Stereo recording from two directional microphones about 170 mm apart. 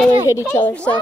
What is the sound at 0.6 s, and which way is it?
Speech, 5° left (ahead or behind).